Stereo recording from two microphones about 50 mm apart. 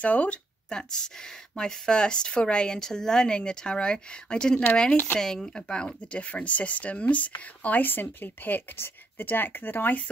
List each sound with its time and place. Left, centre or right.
0.0 s speech: left
0.7 s speech: centre
4.9 s speech: left
5.2 s speech: centre; by 7.8 s left
7.8 s speech: left